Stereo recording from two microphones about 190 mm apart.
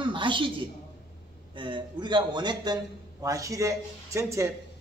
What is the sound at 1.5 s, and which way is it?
A man's voice, 25° right (ahead or behind).